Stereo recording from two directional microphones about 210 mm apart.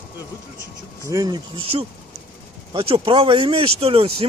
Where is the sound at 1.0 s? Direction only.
15° right (ahead or behind).